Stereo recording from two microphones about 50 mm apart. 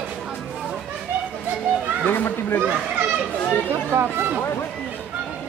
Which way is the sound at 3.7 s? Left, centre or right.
Right.